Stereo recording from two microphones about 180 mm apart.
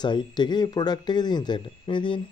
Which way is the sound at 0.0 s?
25° left (ahead or behind).